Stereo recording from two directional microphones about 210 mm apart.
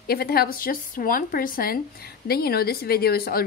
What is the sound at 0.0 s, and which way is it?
A woman's voice, 45° left (ahead or behind).